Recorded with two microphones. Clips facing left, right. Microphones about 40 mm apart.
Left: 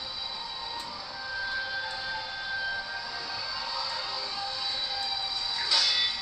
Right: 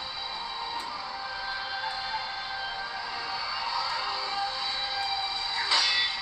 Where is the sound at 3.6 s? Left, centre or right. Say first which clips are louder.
Right 6 dB; right.